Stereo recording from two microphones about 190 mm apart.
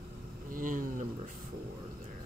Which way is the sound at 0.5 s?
45° right (ahead or behind).